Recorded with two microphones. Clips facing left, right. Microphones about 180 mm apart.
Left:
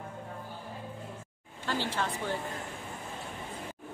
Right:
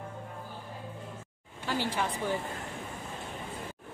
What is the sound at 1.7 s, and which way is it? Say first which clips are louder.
Speech: right 1 dB; 10° right (ahead or behind).